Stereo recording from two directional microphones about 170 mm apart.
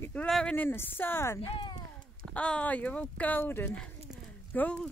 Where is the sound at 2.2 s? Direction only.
5° left (ahead or behind).